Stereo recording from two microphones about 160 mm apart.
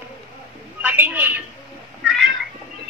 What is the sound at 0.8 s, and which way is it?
Speech, 10° right (ahead or behind).